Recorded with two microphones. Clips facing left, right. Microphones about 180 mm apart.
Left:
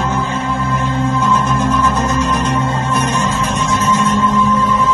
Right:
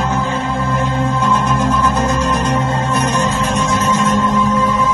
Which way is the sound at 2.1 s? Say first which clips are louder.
Even; 10° right (ahead or behind).